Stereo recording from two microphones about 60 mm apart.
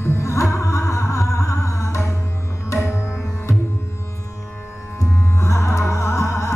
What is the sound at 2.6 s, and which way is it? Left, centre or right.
Music, left.